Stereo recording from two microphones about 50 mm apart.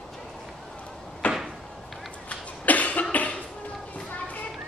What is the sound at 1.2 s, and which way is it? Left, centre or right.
Door, left.